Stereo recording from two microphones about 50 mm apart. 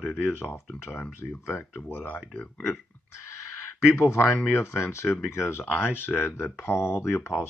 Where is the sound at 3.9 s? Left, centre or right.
Left.